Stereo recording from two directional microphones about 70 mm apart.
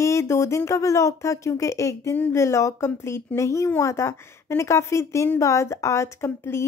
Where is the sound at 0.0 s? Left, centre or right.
Left.